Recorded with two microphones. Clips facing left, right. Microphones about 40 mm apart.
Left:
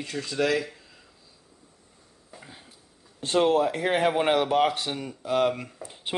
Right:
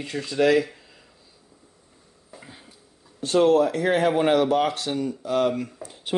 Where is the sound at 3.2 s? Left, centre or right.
Left.